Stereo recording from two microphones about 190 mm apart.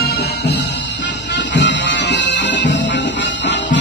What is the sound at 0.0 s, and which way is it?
Music, 55° left (ahead or behind).